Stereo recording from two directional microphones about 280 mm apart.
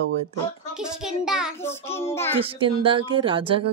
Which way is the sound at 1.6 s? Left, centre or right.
Centre.